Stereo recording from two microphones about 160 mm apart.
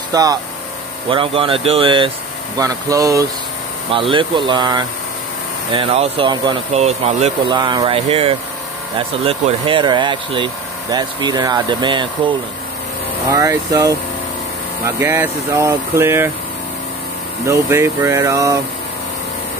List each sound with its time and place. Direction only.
0.1 s speech: 25° right (ahead or behind)
1.1 s speech: 35° right (ahead or behind)
2.6 s speech: 20° right (ahead or behind)
4.1 s speech: 30° right (ahead or behind)
7.4 s speech: 30° right (ahead or behind)
13.3 s speech: 20° right (ahead or behind)
17.5 s speech: 15° right (ahead or behind)